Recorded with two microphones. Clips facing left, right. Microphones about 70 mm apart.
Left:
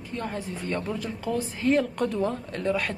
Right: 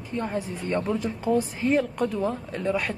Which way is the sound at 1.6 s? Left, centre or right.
Centre.